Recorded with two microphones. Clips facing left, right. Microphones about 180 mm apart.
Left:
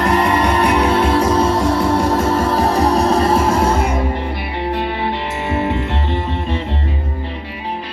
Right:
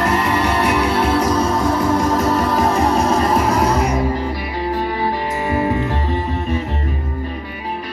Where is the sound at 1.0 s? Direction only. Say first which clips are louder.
Left 2 dB; 30° left (ahead or behind).